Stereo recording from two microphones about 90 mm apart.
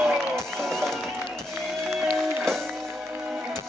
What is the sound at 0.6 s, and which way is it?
Music, 5° left (ahead or behind).